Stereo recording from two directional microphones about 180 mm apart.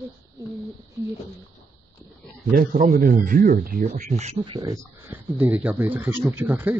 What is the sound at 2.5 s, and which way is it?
Speech, 50° right (ahead or behind).